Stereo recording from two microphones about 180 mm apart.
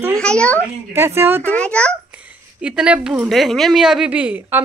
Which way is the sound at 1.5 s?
5° left (ahead or behind).